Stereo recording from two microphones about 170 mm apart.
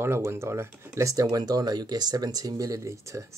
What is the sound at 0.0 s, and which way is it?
Speech, 15° right (ahead or behind).